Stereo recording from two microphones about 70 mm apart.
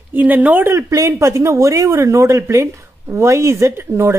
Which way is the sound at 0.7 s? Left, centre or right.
Right.